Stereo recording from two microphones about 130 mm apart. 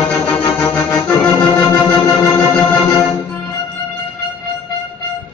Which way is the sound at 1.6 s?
30° left (ahead or behind).